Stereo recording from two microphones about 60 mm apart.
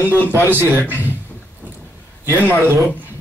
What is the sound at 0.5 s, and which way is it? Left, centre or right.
Speech, right.